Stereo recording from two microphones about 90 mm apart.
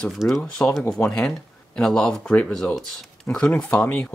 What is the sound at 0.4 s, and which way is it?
Speech, 10° left (ahead or behind).